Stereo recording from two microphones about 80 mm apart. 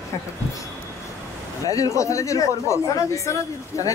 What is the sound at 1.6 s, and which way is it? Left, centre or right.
Speech, left.